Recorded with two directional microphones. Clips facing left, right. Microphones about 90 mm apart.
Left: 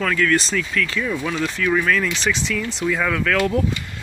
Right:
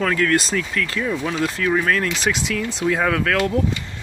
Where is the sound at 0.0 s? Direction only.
40° right (ahead or behind).